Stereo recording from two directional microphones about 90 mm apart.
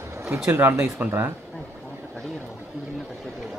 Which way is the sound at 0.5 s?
25° right (ahead or behind).